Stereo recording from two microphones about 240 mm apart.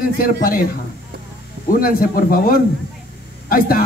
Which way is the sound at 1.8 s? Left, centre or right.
Left.